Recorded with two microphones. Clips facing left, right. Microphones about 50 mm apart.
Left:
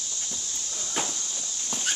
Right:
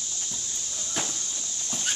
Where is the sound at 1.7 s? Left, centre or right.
Centre.